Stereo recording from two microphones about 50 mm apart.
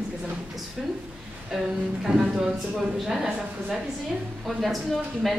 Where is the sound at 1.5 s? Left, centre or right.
Centre.